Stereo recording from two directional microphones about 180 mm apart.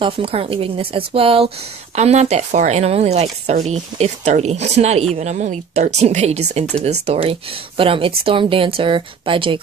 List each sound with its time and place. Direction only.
0.0 s a woman's voice: 30° right (ahead or behind)